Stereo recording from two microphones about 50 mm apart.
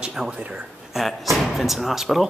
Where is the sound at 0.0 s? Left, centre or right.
Centre.